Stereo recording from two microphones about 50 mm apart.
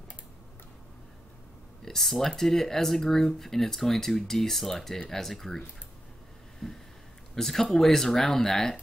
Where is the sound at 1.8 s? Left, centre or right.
Centre.